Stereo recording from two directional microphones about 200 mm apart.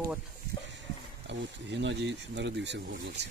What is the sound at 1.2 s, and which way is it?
Speech, 60° right (ahead or behind).